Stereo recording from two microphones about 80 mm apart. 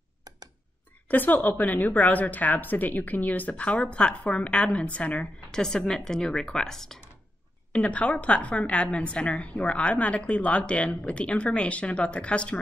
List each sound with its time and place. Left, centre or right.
1.0 s a woman's voice: left